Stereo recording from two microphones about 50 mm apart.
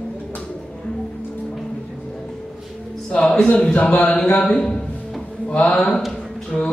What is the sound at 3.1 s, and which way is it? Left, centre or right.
Speech, centre.